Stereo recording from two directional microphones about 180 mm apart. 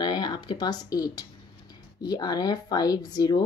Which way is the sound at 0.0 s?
25° left (ahead or behind).